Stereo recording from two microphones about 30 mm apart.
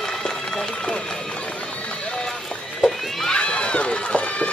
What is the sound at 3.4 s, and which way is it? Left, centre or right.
Run, left.